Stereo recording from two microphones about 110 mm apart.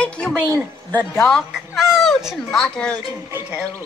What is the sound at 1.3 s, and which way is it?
Speech, centre (ahead or behind).